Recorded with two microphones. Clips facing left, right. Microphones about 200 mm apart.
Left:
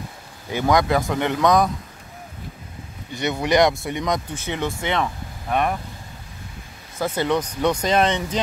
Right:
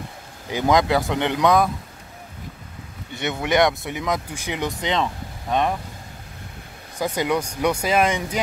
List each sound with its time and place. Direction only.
0.5 s speech: 20° right (ahead or behind)
3.2 s speech: centre (ahead or behind); by 5.1 s 20° right (ahead or behind)
5.5 s speech: 10° left (ahead or behind)
7.0 s speech: 15° right (ahead or behind)